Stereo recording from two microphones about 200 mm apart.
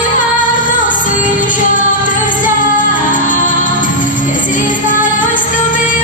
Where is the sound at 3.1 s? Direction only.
40° left (ahead or behind).